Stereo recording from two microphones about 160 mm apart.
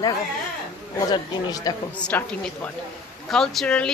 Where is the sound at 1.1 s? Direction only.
25° left (ahead or behind).